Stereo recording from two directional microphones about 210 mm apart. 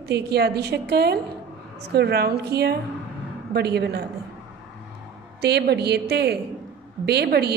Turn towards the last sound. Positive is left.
turn(degrees=-50)  # may be behind; listen again after turning